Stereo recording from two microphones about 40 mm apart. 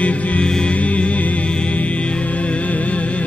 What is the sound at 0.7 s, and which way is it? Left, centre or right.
Music, left.